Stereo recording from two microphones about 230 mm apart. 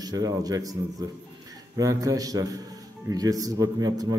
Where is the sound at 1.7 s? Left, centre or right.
Centre.